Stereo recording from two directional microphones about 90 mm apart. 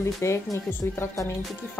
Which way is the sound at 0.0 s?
30° left (ahead or behind).